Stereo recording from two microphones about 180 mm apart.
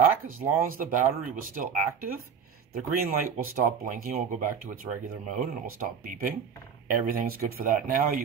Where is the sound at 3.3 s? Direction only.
50° right (ahead or behind).